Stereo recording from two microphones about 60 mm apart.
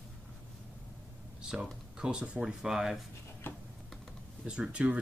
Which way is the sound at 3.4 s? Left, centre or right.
Left.